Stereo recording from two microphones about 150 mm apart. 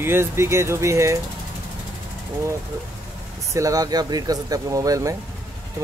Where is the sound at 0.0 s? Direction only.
15° right (ahead or behind).